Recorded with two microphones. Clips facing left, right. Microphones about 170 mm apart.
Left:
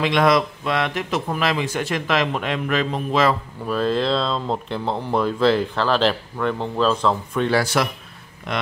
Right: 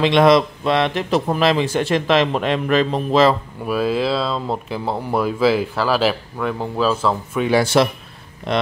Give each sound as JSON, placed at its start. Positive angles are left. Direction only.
{"t": 0.0, "sound": "a man's voice", "side_deg": -25}
{"t": 3.6, "sound": "speech", "side_deg": -10}
{"t": 7.5, "sound": "a man's voice", "side_deg": -25}